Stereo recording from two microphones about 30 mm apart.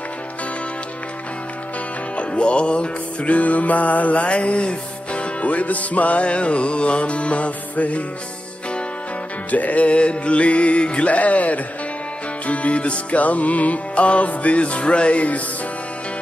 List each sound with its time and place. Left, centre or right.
2.1 s music: left
3.3 s music: left
5.4 s music: left
9.5 s music: left